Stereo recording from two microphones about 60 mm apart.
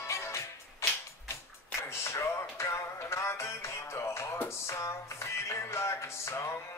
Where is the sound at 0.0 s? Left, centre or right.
Left.